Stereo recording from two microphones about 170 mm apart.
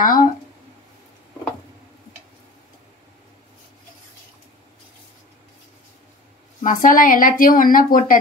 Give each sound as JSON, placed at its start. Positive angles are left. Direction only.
{"t": 0.0, "sound": "a woman's voice", "side_deg": 55}
{"t": 6.6, "sound": "a woman's voice", "side_deg": 50}